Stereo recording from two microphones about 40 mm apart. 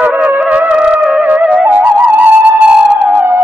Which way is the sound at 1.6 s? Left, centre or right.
Right.